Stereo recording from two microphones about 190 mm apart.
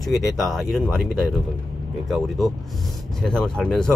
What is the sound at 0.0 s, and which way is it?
Speech, centre (ahead or behind).